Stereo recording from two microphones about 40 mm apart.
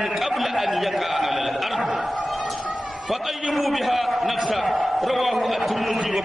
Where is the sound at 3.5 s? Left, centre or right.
Centre.